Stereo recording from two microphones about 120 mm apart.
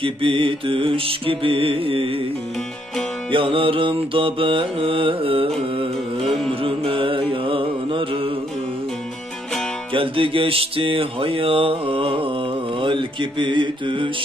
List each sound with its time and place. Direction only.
0.0 s music: 45° right (ahead or behind)
3.3 s music: 45° right (ahead or behind)
6.2 s music: centre (ahead or behind)
6.6 s mantra: 50° right (ahead or behind)
9.9 s music: 45° right (ahead or behind)